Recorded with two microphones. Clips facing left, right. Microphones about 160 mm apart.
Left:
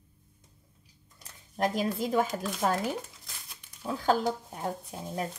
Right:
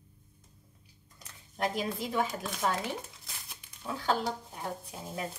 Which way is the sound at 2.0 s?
45° left (ahead or behind).